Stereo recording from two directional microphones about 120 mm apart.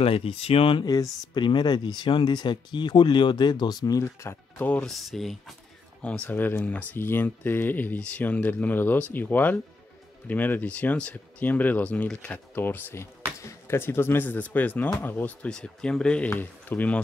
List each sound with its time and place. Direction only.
0.0 s speech: 55° left (ahead or behind)
0.8 s speech: 30° left (ahead or behind); by 4.9 s 10° left (ahead or behind)
4.9 s speech: centre (ahead or behind)
6.0 s speech: 10° left (ahead or behind)